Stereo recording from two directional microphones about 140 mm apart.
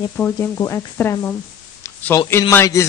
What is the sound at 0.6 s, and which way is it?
Speech, 25° left (ahead or behind).